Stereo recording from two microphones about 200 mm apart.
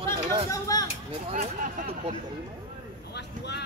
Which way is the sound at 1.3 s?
40° right (ahead or behind).